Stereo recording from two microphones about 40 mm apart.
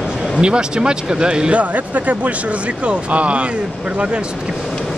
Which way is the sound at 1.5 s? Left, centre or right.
Right.